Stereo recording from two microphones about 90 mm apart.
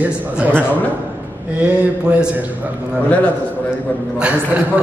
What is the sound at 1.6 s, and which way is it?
Speech, 15° right (ahead or behind).